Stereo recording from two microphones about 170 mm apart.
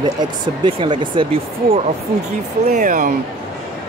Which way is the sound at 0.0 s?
30° right (ahead or behind).